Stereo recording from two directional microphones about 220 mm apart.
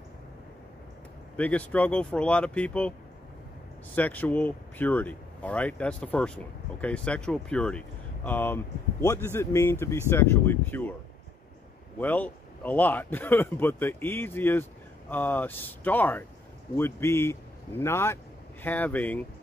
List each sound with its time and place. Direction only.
1.3 s speech: 5° left (ahead or behind)
3.9 s speech: 5° left (ahead or behind)
12.0 s speech: 10° left (ahead or behind)